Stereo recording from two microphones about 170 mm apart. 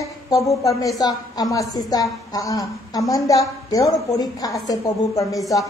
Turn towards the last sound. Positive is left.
turn(degrees=20)  # may be behind; listen again after turning